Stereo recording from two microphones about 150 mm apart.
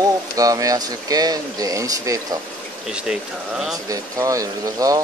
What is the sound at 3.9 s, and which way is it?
Speech, 20° right (ahead or behind).